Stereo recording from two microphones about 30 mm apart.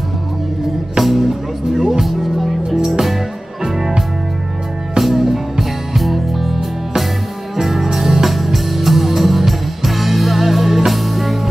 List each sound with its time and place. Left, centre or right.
1.0 s speech: centre
2.9 s music: centre
3.6 s music: centre
4.9 s music: centre